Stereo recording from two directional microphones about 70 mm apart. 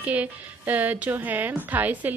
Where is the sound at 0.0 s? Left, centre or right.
Right.